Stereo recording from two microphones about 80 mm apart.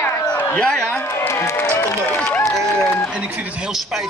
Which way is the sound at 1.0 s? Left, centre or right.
Left.